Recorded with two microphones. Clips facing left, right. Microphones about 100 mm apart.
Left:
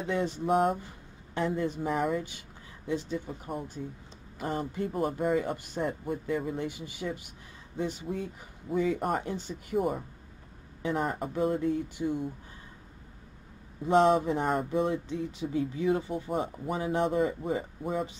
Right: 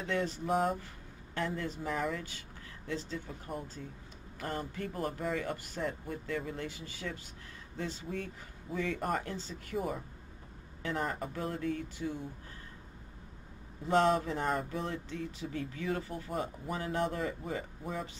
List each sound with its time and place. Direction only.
0.0 s speech: 20° left (ahead or behind)
0.5 s speech: 5° left (ahead or behind)
1.3 s speech: 20° left (ahead or behind)
10.8 s speech: 10° left (ahead or behind)
13.8 s speech: 15° left (ahead or behind)